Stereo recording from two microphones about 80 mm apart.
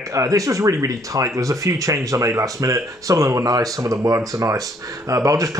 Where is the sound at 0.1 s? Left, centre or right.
Right.